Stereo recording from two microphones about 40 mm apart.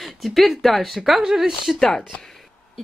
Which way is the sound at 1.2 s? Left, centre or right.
Centre.